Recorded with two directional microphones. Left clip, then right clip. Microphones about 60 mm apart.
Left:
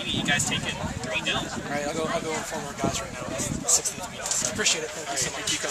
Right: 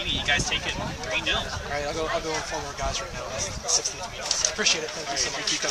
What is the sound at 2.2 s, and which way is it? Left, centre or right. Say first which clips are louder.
Speech: right 1 dB; right.